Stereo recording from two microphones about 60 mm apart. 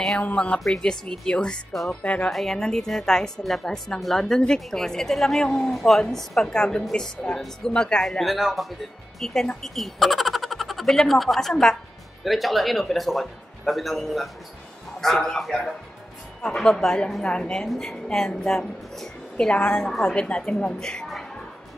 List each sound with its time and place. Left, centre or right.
0.7 s a woman's voice: centre
20.2 s a woman's voice: centre